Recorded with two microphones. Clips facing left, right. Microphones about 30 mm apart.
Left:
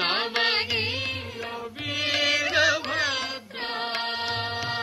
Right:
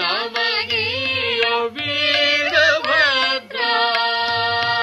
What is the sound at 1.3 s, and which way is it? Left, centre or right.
Music, right.